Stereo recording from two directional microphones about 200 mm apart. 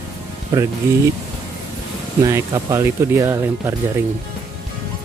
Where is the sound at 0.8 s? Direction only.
15° right (ahead or behind).